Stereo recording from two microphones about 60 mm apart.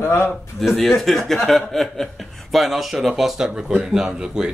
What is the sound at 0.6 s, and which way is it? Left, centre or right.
Speech, centre.